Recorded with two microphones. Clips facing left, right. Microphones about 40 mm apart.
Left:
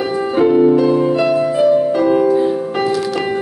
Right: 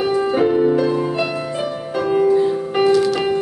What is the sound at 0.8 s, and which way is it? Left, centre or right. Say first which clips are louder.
Music: left 6 dB; centre.